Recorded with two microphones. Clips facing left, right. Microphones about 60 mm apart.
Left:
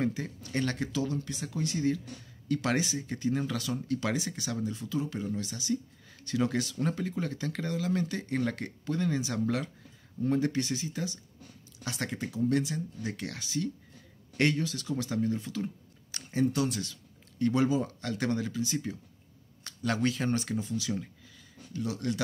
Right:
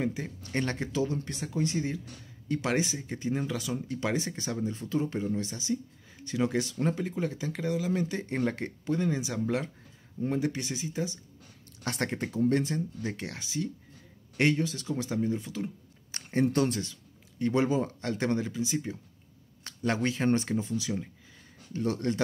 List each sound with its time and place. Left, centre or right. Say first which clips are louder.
0.1 s speech: right 1 dB; right
11.8 s speech: right 3 dB; right; by 15.7 s centre
16.1 s speech: right 2 dB; right
17.4 s speech: even; right
21.7 s speech: right 3 dB; right